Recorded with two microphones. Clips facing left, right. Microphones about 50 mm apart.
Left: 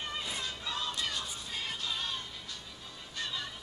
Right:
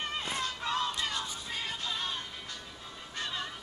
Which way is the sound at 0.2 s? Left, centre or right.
Right.